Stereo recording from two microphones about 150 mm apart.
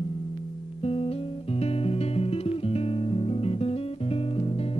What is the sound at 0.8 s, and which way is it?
Music, 40° left (ahead or behind).